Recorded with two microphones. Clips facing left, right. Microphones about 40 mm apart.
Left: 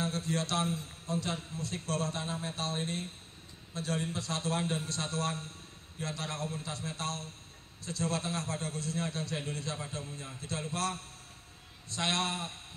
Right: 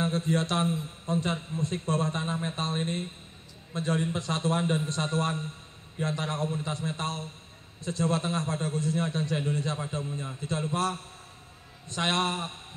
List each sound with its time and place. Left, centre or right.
0.0 s a man's voice: right